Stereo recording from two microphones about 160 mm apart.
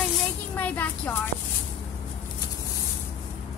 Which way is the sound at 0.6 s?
10° left (ahead or behind).